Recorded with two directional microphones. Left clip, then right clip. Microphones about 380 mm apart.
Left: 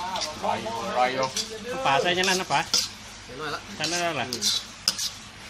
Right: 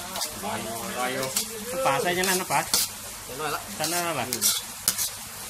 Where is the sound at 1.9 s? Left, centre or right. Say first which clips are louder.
Left 2 dB; centre.